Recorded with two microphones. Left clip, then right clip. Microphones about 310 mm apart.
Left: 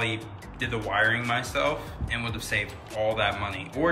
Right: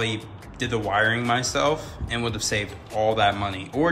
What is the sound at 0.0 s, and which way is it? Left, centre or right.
Speech, centre.